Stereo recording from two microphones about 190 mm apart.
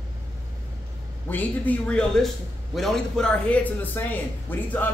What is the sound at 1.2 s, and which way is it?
A man's voice, 10° left (ahead or behind).